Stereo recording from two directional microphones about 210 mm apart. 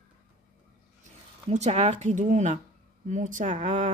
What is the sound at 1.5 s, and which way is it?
Speech, 35° right (ahead or behind).